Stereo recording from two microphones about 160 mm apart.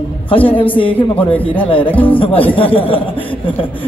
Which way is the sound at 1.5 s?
35° left (ahead or behind).